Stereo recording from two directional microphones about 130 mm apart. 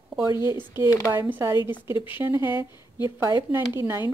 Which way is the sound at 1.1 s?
15° right (ahead or behind).